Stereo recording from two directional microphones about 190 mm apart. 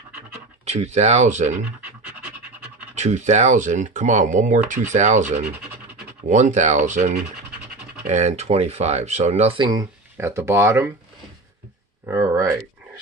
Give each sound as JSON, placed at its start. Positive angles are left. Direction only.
{"t": 0.7, "sound": "speech", "side_deg": -35}
{"t": 2.9, "sound": "speech", "side_deg": -35}
{"t": 12.1, "sound": "a sound", "side_deg": -15}